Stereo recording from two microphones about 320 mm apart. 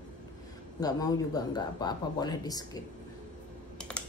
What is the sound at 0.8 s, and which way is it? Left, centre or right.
Speech, centre.